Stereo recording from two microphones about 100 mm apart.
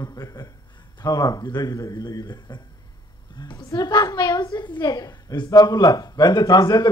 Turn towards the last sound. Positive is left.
turn(degrees=40)  # may be behind; listen again after turning